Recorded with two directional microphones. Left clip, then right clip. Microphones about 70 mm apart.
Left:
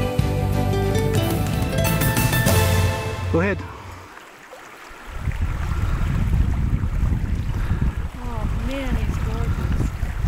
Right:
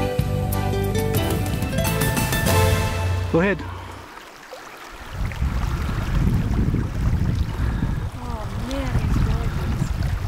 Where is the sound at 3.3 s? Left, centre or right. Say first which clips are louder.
Right 2 dB; right.